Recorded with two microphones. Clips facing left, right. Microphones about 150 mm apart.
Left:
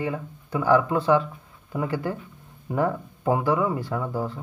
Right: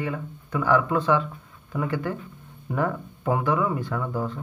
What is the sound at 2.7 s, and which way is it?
Speech, 25° left (ahead or behind).